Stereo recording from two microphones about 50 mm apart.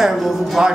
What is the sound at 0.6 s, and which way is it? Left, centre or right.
Speech, centre.